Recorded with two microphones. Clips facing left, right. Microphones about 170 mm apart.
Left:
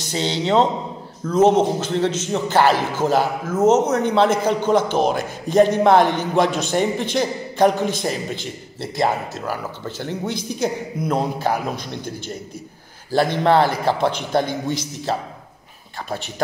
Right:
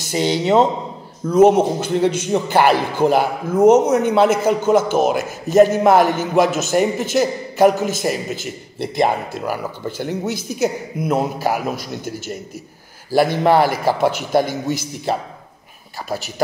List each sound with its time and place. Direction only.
0.0 s a man's voice: 10° right (ahead or behind)